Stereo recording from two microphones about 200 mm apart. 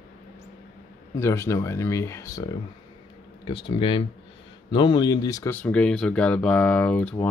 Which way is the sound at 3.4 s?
25° left (ahead or behind).